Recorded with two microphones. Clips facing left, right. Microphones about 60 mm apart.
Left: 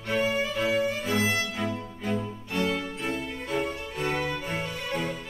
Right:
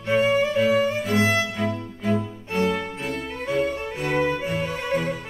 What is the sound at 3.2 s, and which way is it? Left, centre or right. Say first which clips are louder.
Music: right 4 dB; right.